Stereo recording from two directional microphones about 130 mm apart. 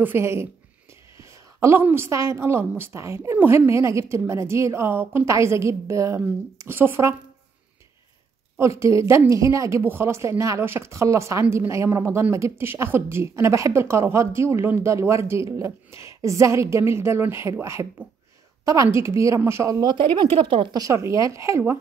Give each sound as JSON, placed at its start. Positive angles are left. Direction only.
{"t": 0.0, "sound": "speech", "side_deg": -20}
{"t": 8.5, "sound": "speech", "side_deg": -20}
{"t": 20.0, "sound": "speech", "side_deg": -40}
{"t": 20.8, "sound": "speech", "side_deg": -25}